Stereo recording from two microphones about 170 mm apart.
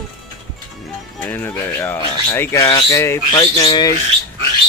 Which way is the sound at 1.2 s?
10° left (ahead or behind).